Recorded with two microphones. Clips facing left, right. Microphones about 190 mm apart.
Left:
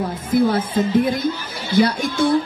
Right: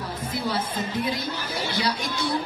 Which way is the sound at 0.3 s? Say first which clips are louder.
Left 12 dB; 50° left (ahead or behind).